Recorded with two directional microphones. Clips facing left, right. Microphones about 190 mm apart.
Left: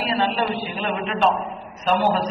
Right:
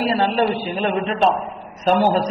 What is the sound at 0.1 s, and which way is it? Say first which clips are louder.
A man's voice: right 4 dB; 40° right (ahead or behind).